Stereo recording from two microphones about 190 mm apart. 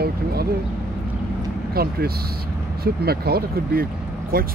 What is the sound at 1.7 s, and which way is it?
Speech, 55° right (ahead or behind).